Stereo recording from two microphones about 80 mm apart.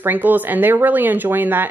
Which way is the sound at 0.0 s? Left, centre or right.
Right.